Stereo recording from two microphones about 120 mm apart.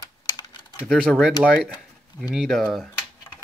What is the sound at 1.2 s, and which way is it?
Speech, 10° right (ahead or behind).